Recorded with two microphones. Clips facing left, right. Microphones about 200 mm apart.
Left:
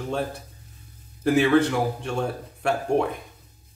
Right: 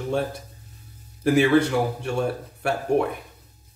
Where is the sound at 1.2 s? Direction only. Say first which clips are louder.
Right 1 dB; 10° right (ahead or behind).